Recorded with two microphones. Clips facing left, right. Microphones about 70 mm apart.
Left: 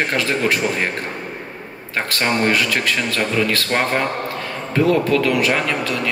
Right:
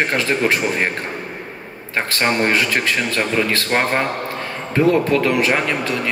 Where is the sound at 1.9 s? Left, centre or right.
Right.